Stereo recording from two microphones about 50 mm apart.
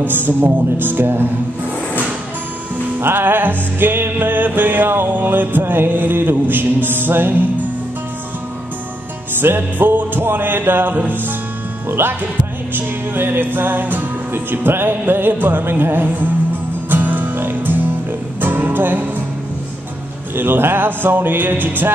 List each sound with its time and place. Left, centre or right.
0.0 s music: right
3.0 s music: right
9.4 s music: right
20.3 s music: right